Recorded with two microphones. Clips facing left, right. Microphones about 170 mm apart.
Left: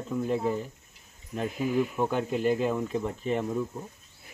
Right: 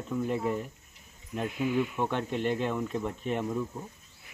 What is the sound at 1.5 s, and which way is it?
Speech, 40° left (ahead or behind).